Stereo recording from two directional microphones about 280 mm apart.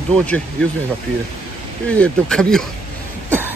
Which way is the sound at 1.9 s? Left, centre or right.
Centre.